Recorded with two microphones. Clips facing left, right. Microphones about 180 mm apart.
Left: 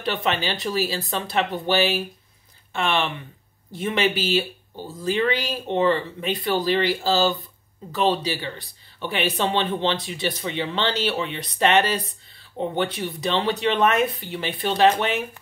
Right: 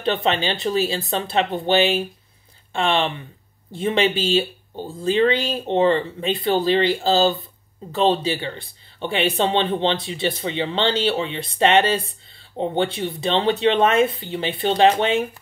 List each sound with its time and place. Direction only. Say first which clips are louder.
0.0 s speech: right 4 dB; 25° right (ahead or behind)